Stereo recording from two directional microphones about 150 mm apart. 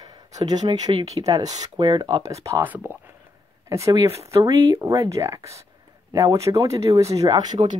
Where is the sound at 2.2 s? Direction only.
20° right (ahead or behind).